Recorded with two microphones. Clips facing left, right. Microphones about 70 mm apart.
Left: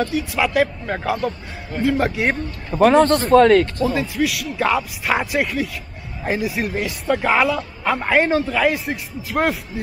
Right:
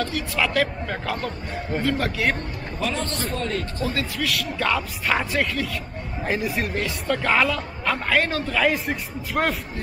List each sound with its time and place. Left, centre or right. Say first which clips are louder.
0.0 s speech: left 4 dB; centre
2.7 s speech: left 15 dB; left
3.9 s speech: left 5 dB; centre
8.5 s speech: left 3 dB; centre